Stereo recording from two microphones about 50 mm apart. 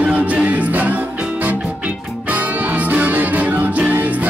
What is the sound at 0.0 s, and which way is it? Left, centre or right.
A capella, right.